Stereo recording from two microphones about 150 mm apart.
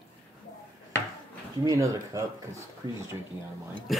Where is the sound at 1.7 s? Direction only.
20° right (ahead or behind).